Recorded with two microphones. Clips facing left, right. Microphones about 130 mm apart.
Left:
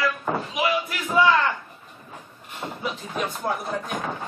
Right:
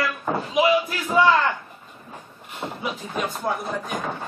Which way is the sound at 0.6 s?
30° right (ahead or behind).